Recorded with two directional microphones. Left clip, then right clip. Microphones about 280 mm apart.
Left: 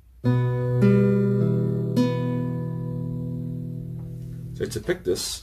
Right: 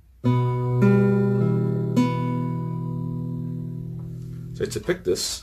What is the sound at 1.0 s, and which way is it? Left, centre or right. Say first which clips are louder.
Music: even; centre.